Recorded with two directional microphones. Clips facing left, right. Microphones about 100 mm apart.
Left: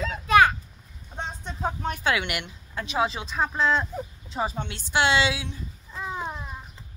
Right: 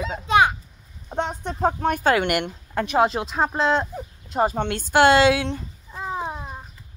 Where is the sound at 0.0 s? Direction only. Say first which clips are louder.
Even; 20° right (ahead or behind).